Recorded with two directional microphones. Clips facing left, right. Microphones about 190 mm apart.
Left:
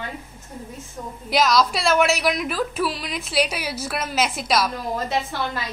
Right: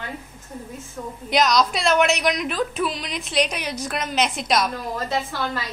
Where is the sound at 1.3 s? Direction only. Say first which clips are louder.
Even; centre (ahead or behind).